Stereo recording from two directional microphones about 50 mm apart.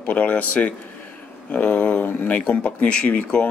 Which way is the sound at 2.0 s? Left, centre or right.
Left.